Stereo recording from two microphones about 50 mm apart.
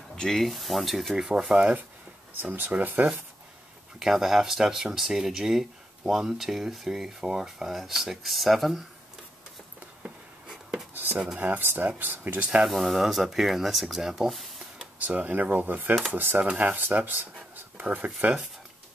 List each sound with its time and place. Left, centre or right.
0.1 s speech: centre
2.5 s speech: right
4.0 s speech: centre
10.9 s a sound: right
11.3 s speech: right
12.6 s speech: centre
15.0 s speech: right